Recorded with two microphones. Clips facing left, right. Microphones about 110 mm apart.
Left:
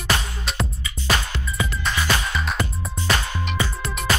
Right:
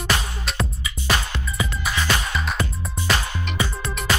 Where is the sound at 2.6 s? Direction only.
20° right (ahead or behind).